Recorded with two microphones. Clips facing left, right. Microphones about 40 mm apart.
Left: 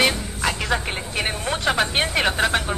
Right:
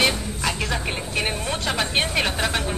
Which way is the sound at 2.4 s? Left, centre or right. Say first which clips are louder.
Left 3 dB; centre.